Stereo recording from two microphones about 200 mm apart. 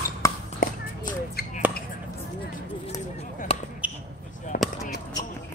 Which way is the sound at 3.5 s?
25° left (ahead or behind).